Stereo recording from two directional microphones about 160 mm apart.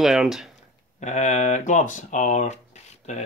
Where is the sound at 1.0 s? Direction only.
45° left (ahead or behind).